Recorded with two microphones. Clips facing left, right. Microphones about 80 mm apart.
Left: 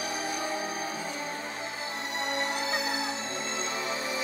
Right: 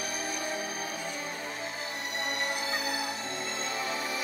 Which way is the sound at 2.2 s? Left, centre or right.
Left.